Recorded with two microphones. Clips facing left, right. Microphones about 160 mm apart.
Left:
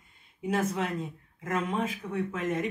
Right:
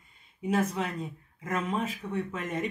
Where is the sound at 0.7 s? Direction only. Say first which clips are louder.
Left 1 dB; centre (ahead or behind).